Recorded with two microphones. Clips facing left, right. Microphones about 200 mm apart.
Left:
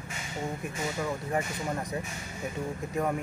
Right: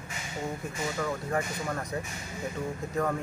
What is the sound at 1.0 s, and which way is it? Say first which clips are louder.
Speech: right 1 dB; 15° left (ahead or behind).